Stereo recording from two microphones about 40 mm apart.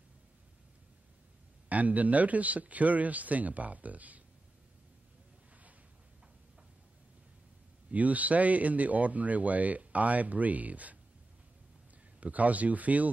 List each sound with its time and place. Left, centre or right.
1.7 s speech: right
7.9 s speech: right
12.2 s speech: right